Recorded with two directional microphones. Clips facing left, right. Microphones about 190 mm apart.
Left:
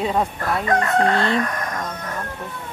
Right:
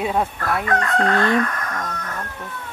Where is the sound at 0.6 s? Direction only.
20° left (ahead or behind).